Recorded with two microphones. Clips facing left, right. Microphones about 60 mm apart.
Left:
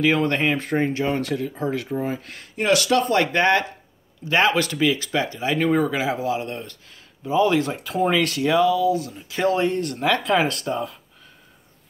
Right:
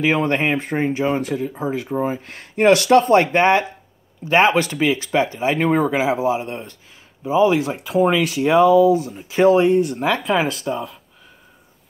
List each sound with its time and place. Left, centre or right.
0.0 s speech: centre
2.2 s speech: right; by 8.5 s centre
8.5 s speech: right; by 11.0 s centre